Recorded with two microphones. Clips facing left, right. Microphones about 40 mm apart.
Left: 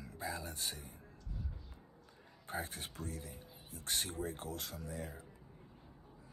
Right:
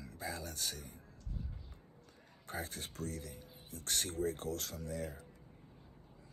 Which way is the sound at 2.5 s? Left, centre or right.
Left.